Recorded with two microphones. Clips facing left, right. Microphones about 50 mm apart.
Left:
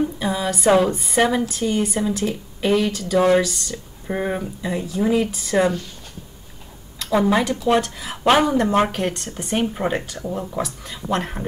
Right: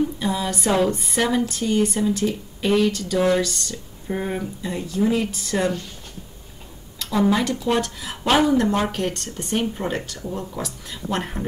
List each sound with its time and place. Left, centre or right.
0.2 s speech: centre
3.7 s speech: centre
7.1 s speech: left
7.6 s speech: centre
10.6 s speech: centre